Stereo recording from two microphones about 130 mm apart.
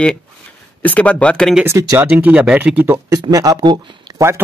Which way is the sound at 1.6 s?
20° right (ahead or behind).